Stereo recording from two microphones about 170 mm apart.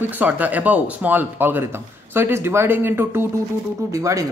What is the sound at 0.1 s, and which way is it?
Speech, 10° right (ahead or behind).